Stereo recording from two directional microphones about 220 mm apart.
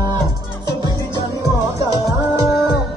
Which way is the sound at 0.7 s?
20° right (ahead or behind).